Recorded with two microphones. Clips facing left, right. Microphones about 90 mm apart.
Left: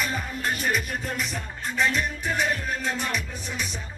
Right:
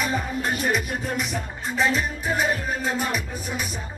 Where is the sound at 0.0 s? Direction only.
5° right (ahead or behind).